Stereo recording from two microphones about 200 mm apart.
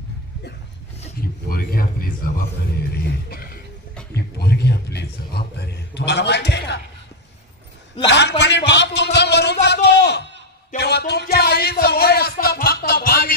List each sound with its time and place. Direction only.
1.5 s speech: 45° left (ahead or behind)
3.3 s throat clearing: 50° left (ahead or behind)
4.4 s a man's voice: 55° left (ahead or behind)
8.1 s a man's voice: 60° left (ahead or behind)